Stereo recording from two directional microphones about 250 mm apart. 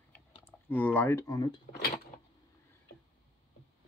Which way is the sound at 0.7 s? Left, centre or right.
Centre.